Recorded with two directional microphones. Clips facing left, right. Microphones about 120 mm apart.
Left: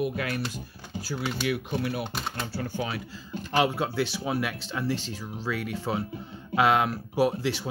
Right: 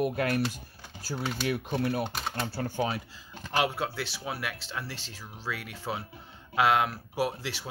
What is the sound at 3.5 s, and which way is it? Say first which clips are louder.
Speech: left 4 dB; 5° right (ahead or behind).